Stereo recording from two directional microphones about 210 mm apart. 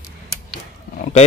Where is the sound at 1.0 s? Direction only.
30° left (ahead or behind).